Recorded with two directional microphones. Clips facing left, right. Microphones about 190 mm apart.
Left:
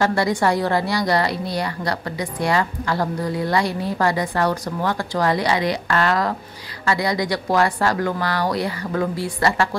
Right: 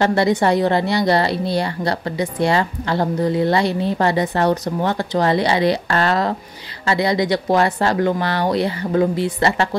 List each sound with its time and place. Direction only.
0.0 s a woman's voice: 25° right (ahead or behind)